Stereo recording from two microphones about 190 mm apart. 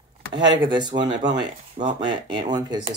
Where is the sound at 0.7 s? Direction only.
25° right (ahead or behind).